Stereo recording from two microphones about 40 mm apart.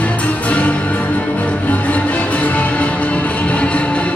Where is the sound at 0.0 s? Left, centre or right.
Left.